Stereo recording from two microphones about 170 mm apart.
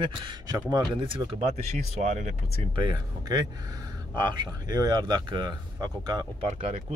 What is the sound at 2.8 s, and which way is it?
Speech, 25° right (ahead or behind).